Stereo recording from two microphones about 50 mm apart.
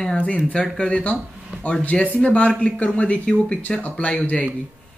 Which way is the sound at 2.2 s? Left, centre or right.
Left.